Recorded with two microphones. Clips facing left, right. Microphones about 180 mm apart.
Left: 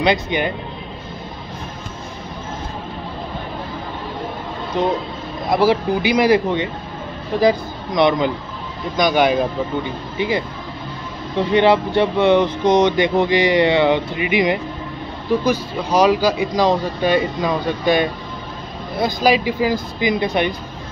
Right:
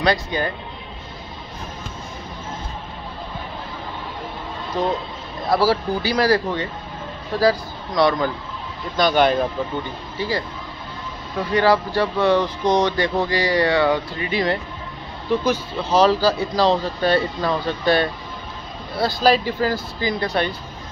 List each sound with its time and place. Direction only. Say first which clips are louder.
0.0 s speech: left 3 dB; 20° left (ahead or behind)
4.7 s speech: left 3 dB; 20° left (ahead or behind)